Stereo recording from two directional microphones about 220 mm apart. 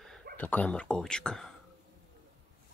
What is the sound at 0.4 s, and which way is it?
Speech, 5° left (ahead or behind).